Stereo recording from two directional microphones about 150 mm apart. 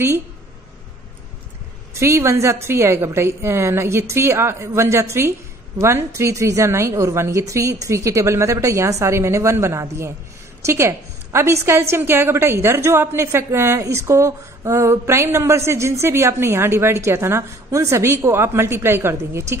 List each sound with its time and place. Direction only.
2.0 s a woman's voice: 15° right (ahead or behind)